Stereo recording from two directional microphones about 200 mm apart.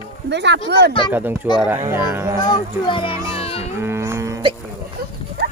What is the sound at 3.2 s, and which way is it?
Music, 30° left (ahead or behind).